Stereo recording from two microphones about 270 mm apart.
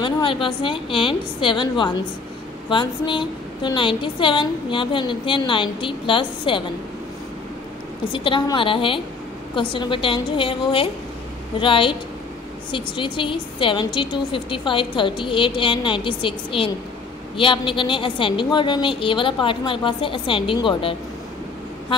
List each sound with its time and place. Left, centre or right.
0.0 s a woman's voice: centre
8.1 s a woman's voice: centre